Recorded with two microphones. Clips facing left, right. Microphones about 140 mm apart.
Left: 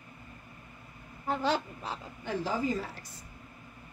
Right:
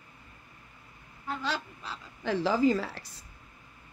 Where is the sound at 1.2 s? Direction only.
45° left (ahead or behind).